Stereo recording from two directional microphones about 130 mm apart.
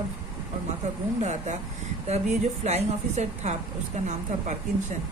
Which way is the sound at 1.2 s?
65° right (ahead or behind).